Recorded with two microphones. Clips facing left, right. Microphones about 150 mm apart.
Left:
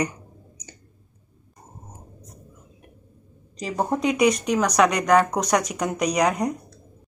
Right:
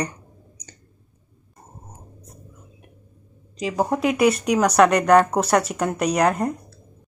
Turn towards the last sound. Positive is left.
turn(degrees=-5)  # may be behind; listen again after turning